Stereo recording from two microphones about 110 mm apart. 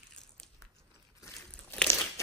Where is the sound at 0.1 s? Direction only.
5° left (ahead or behind).